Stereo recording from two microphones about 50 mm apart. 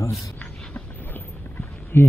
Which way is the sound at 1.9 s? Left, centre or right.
Left.